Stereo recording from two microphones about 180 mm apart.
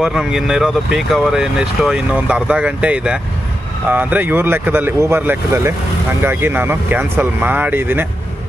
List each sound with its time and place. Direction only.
0.0 s speech: 5° right (ahead or behind)